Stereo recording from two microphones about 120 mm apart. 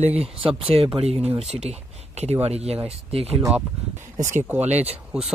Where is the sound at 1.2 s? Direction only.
60° right (ahead or behind).